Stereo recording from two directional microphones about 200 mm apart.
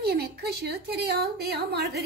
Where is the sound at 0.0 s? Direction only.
55° right (ahead or behind).